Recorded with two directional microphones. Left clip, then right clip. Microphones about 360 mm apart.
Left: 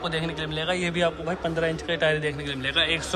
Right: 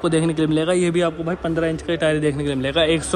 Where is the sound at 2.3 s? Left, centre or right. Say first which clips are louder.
Right 5 dB; centre.